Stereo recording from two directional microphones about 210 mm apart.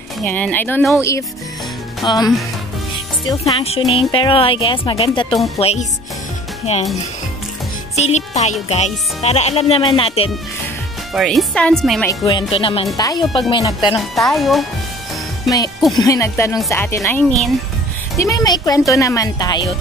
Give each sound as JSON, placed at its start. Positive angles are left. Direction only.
{"t": 0.2, "sound": "speech", "side_deg": 10}
{"t": 2.0, "sound": "speech", "side_deg": 20}
{"t": 3.6, "sound": "speech", "side_deg": 30}
{"t": 7.9, "sound": "speech", "side_deg": 30}
{"t": 11.1, "sound": "speech", "side_deg": 0}
{"t": 12.1, "sound": "speech", "side_deg": 20}
{"t": 13.9, "sound": "speech", "side_deg": 0}
{"t": 16.0, "sound": "speech", "side_deg": 15}